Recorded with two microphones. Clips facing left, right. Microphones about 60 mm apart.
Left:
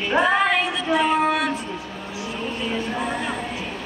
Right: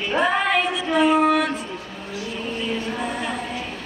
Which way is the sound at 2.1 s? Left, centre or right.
Centre.